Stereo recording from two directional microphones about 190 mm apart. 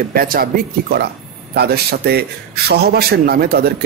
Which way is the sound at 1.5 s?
60° right (ahead or behind).